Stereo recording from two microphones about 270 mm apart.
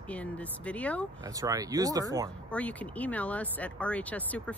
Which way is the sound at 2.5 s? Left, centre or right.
Centre.